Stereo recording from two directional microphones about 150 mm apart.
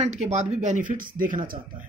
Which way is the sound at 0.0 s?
50° right (ahead or behind).